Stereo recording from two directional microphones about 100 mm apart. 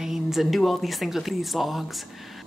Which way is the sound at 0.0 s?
5° right (ahead or behind).